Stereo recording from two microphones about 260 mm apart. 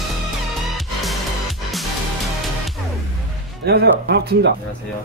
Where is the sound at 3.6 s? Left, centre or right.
Right.